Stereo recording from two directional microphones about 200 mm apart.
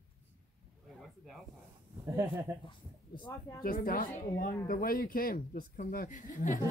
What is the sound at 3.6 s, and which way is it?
Speech, 45° left (ahead or behind).